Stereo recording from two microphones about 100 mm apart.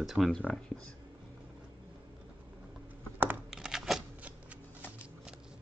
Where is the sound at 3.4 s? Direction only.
5° right (ahead or behind).